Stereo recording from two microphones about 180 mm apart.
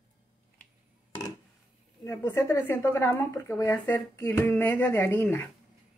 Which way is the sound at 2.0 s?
15° left (ahead or behind).